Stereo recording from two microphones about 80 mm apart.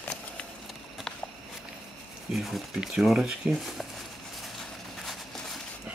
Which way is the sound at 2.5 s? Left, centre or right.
Centre.